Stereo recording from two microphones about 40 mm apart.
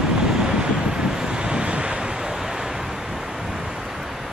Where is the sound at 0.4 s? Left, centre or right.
Centre.